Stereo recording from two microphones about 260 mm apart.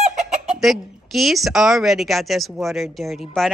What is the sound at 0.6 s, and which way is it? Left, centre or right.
Speech, centre.